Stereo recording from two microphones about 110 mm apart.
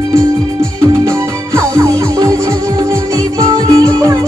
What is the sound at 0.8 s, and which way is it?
Music, 30° right (ahead or behind).